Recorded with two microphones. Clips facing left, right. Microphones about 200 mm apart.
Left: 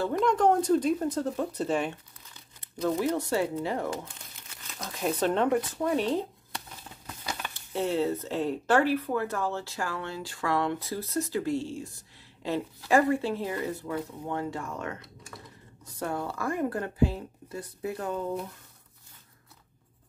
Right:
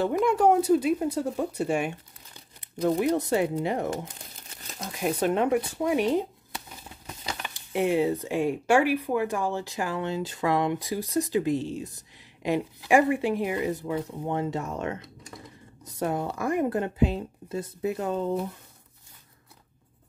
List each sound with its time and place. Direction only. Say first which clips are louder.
0.1 s speech: even; 10° right (ahead or behind)
2.6 s crumpling: right 1 dB; 15° right (ahead or behind)
3.2 s speech: right 3 dB; 20° right (ahead or behind)
3.9 s crumpling: right 3 dB; 40° right (ahead or behind)
4.8 s speech: right 2 dB; 15° right (ahead or behind)
6.5 s a sound: right 1 dB; 5° right (ahead or behind)
7.4 s speech: right 5 dB; 15° right (ahead or behind)